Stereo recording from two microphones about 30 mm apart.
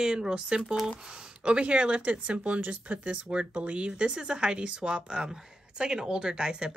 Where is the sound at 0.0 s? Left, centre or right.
Right.